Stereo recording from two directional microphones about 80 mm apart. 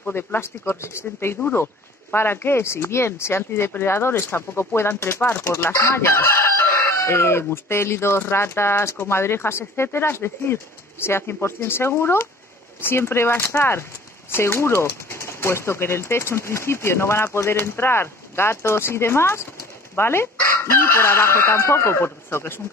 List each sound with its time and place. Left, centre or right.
0.1 s speech: left